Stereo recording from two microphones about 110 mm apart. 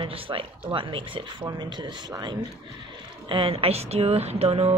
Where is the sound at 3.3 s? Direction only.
55° right (ahead or behind); by 4.8 s 75° right (ahead or behind).